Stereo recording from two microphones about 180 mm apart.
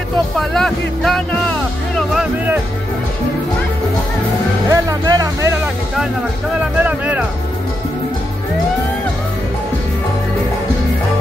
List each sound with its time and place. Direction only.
0.4 s speech: 5° left (ahead or behind)
2.0 s music: 5° right (ahead or behind)
4.6 s speech: 20° right (ahead or behind)
6.6 s speech: 10° right (ahead or behind)